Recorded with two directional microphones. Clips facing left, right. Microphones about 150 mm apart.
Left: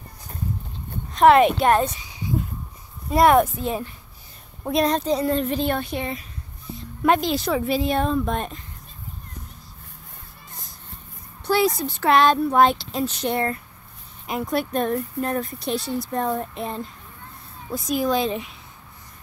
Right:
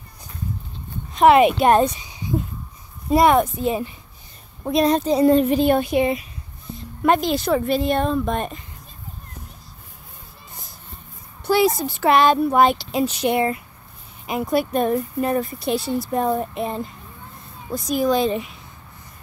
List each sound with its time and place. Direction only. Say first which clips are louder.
1.1 s speech: right 1 dB; 5° right (ahead or behind)
1.6 s speech: right 3 dB; 20° right (ahead or behind)
3.2 s speech: even; centre (ahead or behind)
6.7 s speech: right 1 dB; centre (ahead or behind)
11.4 s speech: right 3 dB; 5° right (ahead or behind)